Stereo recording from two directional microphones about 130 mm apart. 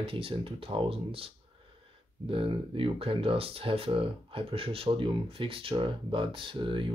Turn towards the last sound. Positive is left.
turn(degrees=-40)  # may be behind; listen again after turning